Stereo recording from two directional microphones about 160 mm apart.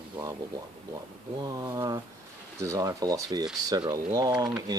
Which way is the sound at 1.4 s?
25° right (ahead or behind).